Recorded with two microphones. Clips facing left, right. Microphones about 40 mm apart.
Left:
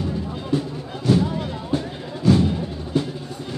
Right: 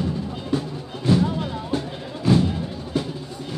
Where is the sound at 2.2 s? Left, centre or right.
Centre.